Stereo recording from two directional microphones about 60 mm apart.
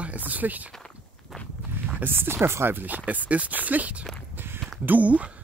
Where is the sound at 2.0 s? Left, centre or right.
Right.